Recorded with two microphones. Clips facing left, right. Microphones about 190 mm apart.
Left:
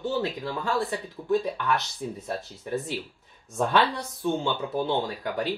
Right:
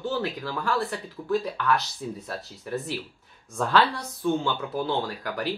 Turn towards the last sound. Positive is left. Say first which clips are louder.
# left 1 dB
turn(degrees=20)  # may be behind; listen again after turning